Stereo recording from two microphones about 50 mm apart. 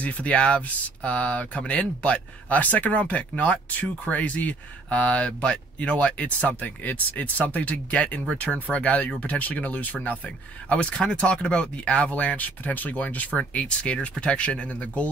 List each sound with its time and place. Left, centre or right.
0.0 s speech: left